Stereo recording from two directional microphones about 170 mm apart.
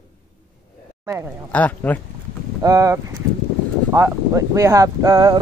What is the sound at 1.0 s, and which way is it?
Speech, 15° right (ahead or behind).